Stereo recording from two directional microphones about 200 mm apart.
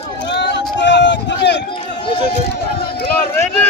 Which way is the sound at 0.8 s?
65° left (ahead or behind).